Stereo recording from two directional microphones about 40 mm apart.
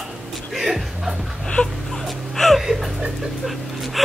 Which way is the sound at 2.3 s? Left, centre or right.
Centre.